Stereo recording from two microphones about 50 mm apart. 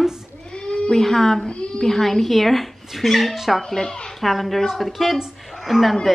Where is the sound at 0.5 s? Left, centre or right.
Left.